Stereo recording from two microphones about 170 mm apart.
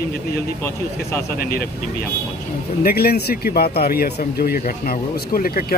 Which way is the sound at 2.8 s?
65° left (ahead or behind).